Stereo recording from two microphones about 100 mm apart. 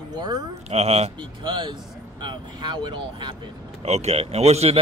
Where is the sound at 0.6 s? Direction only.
90° right.